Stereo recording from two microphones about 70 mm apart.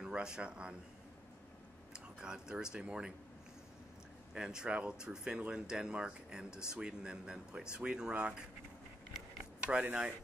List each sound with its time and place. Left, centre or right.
0.0 s speech: centre
2.1 s speech: centre
4.3 s speech: centre
9.4 s speech: centre